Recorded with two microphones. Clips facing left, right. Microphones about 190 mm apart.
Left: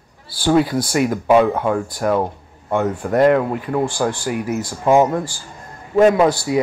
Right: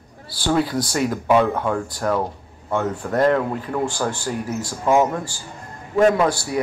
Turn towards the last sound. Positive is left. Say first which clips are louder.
# left 4 dB
turn(degrees=20)  # may be behind; listen again after turning